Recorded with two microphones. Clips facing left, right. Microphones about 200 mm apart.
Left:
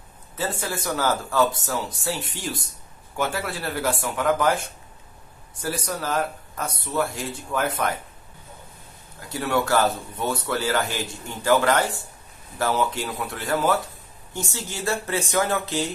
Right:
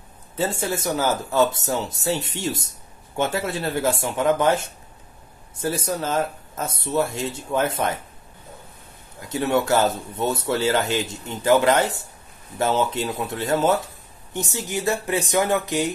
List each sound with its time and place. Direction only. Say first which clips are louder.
0.4 s speech: right 4 dB; 25° right (ahead or behind)
9.3 s speech: right 2 dB; 20° right (ahead or behind)